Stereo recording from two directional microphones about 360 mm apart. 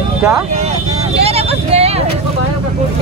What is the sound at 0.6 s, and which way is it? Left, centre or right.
Vehicle, centre.